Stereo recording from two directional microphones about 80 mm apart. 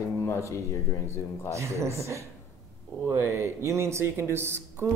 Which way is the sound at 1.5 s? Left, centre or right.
Right.